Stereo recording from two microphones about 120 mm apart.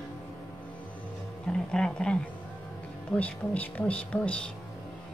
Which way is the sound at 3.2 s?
10° left (ahead or behind).